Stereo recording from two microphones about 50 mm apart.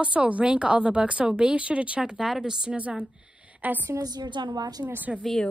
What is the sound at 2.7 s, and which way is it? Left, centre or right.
A woman's voice, right.